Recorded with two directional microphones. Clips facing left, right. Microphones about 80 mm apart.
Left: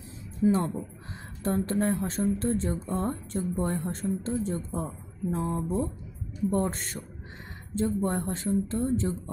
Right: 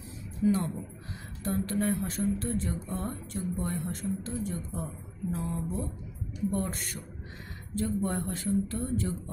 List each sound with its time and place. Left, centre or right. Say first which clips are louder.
0.4 s a woman's voice: left 3 dB; left